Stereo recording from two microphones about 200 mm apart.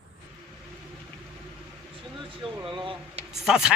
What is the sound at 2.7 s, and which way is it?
Speech, 25° right (ahead or behind).